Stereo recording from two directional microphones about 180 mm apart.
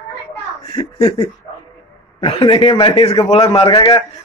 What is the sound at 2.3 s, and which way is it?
A man's voice, 30° left (ahead or behind).